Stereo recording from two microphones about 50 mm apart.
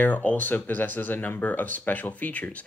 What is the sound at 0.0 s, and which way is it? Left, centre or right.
Speech, left.